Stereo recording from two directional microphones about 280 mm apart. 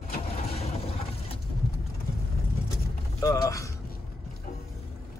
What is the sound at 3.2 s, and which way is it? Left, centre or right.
Speech, centre.